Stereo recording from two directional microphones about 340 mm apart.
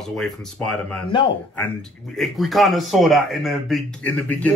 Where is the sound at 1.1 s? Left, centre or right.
Centre.